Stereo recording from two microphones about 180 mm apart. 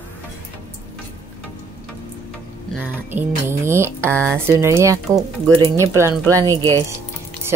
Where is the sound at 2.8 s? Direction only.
10° right (ahead or behind).